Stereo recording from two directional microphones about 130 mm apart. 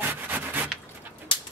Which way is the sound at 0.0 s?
15° right (ahead or behind).